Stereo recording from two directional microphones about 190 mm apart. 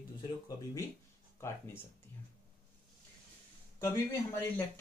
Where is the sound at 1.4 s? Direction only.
15° left (ahead or behind).